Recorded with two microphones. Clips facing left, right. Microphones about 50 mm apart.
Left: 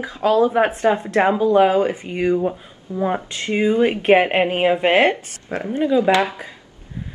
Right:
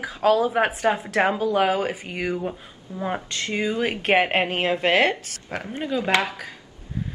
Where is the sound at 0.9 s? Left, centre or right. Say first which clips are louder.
Left 4 dB; centre.